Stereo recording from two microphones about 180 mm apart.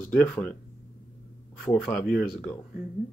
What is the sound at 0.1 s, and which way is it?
Speech, 5° left (ahead or behind).